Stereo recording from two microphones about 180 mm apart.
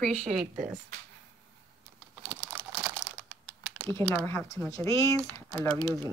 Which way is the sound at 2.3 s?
5° right (ahead or behind).